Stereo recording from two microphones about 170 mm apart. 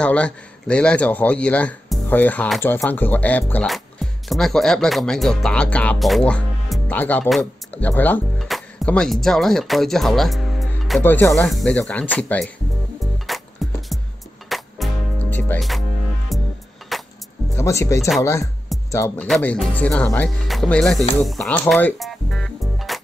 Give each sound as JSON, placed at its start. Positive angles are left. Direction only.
{"t": 0.0, "sound": "a man's voice", "side_deg": 5}
{"t": 11.0, "sound": "a man's voice", "side_deg": 10}
{"t": 13.0, "sound": "music", "side_deg": 0}
{"t": 15.2, "sound": "music", "side_deg": 10}
{"t": 16.3, "sound": "music", "side_deg": 0}
{"t": 17.6, "sound": "a man's voice", "side_deg": 15}
{"t": 19.2, "sound": "a man's voice", "side_deg": 5}